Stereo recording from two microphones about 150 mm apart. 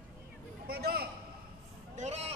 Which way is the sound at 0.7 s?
90° right.